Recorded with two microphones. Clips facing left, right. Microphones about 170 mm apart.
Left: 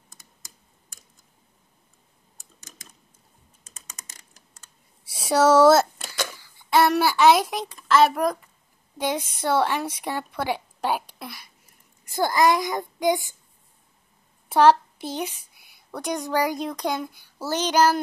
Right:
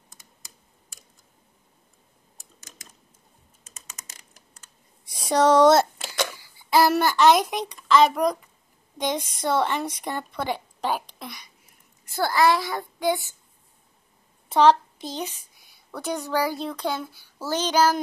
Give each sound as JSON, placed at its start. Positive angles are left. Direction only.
{"t": 5.1, "sound": "a woman's voice", "side_deg": 5}
{"t": 14.5, "sound": "a woman's voice", "side_deg": 10}